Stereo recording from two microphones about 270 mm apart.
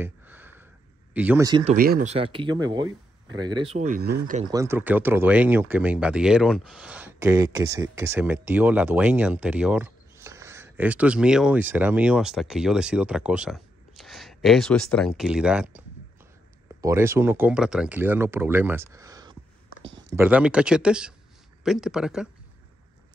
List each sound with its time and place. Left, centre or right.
0.0 s a sound: centre
1.1 s speech: centre; by 4.4 s right
4.4 s speech: centre